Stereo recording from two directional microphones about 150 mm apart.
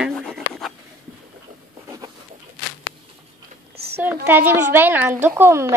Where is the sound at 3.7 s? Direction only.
90° right.